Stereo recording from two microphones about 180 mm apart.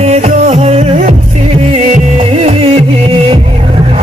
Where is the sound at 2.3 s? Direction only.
35° right (ahead or behind).